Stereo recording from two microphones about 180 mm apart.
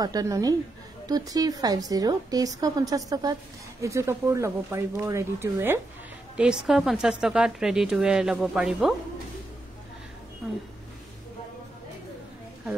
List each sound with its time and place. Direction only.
0.0 s a woman's voice: 20° right (ahead or behind); by 8.9 s centre (ahead or behind)